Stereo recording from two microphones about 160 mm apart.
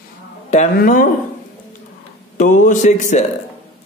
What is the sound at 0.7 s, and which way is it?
Speech, 60° left (ahead or behind).